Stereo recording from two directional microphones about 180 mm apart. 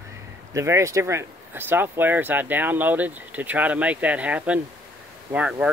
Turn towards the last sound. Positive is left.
turn(degrees=-5)  # may be behind; listen again after turning